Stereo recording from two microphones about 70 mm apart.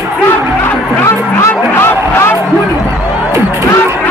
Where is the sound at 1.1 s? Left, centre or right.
Left.